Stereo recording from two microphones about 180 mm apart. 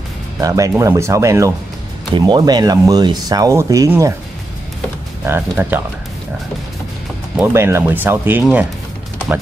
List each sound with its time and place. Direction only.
0.4 s speech: 20° right (ahead or behind)
5.2 s speech: 10° right (ahead or behind)
7.3 s speech: 10° right (ahead or behind)